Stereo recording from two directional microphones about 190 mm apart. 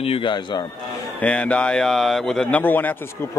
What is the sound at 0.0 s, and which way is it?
Speech, 30° left (ahead or behind).